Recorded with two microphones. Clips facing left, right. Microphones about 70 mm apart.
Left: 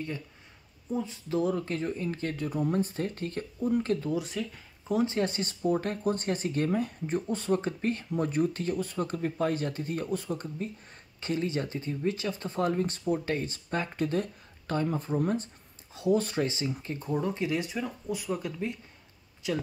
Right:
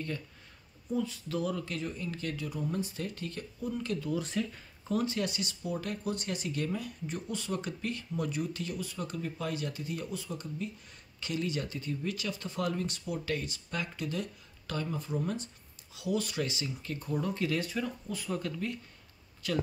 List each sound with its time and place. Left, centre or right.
0.9 s speech: left
4.2 s speech: centre
5.0 s speech: left